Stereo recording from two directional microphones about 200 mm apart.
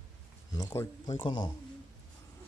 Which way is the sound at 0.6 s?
20° left (ahead or behind).